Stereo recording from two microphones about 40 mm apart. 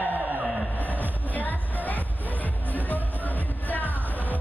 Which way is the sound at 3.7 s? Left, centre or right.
Left.